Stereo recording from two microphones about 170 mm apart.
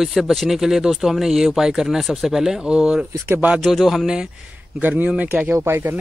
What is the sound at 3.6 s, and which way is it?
Speech, centre (ahead or behind).